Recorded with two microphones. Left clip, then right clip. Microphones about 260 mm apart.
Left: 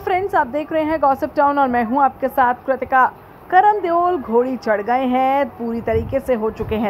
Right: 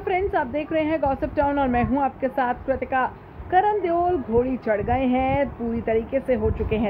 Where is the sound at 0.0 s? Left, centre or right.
Centre.